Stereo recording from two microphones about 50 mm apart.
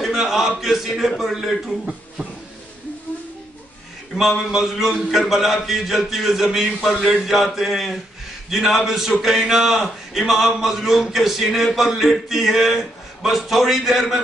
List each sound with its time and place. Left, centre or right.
0.0 s a man's voice: centre
4.2 s a man's voice: centre
6.9 s a man's voice: centre
7.2 s a man's voice: centre